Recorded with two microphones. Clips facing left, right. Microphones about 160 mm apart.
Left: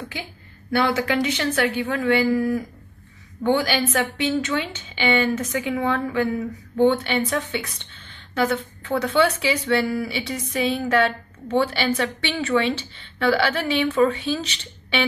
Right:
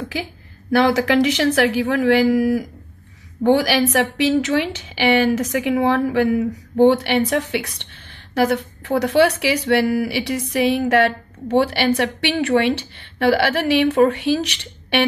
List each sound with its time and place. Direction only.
0.1 s a woman's voice: 90° right
7.0 s a woman's voice: 75° right (ahead or behind)